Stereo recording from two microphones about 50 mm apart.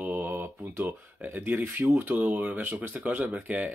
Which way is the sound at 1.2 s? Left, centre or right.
Right.